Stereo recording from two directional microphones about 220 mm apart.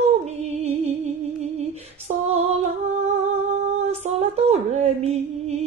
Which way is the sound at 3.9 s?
30° right (ahead or behind).